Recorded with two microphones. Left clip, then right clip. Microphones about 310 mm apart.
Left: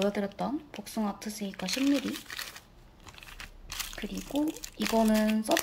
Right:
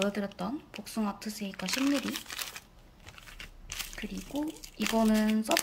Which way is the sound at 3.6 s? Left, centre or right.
Centre.